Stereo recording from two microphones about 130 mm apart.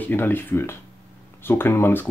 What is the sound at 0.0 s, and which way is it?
Speech, 15° left (ahead or behind).